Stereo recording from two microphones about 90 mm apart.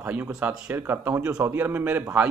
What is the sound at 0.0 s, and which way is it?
A man's voice, 20° right (ahead or behind).